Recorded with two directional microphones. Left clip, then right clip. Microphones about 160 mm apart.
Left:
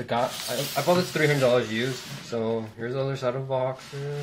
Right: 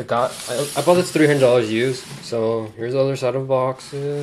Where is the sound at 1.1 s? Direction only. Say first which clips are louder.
Right 7 dB; 60° right (ahead or behind).